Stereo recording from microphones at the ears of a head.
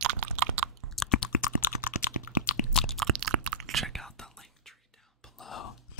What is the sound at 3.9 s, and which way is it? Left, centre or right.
Whispering, centre.